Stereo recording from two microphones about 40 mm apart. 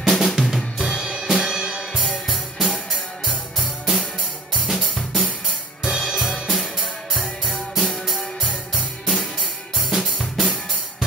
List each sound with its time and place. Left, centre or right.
0.0 s drum kit: centre
0.7 s drum kit: centre
1.2 s music: centre
1.6 s music: right
2.2 s music: centre
4.6 s drum kit: centre
5.9 s music: centre
6.5 s music: centre
7.2 s music: right
7.7 s music: centre
9.8 s drum kit: centre